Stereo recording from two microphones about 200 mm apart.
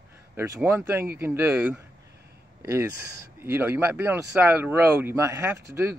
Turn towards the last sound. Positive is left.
turn(degrees=-10)  # may be behind; listen again after turning